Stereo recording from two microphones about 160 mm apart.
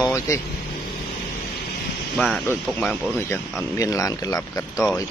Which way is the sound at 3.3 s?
15° left (ahead or behind).